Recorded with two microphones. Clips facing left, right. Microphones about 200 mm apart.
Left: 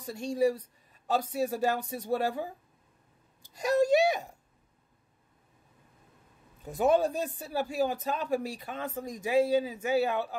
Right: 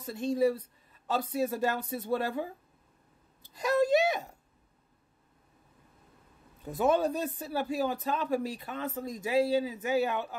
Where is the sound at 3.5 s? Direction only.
45° left (ahead or behind).